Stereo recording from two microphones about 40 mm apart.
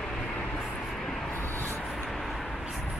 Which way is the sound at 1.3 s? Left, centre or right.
Left.